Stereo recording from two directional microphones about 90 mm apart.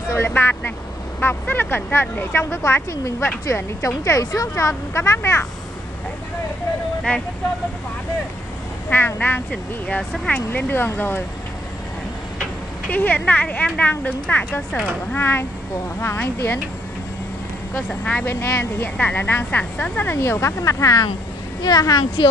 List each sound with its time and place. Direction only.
0.1 s a woman's voice: 25° left (ahead or behind)
8.9 s a woman's voice: 25° left (ahead or behind)
12.9 s a woman's voice: 20° left (ahead or behind)
18.0 s speech: 15° left (ahead or behind)
18.3 s a woman's voice: 25° left (ahead or behind); by 22.0 s 45° left (ahead or behind)